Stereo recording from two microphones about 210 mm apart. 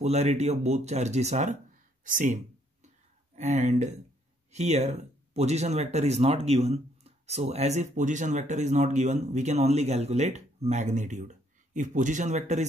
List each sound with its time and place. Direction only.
0.0 s speech: 30° right (ahead or behind)
2.0 s a sound: 35° right (ahead or behind)
3.3 s speech: 35° right (ahead or behind)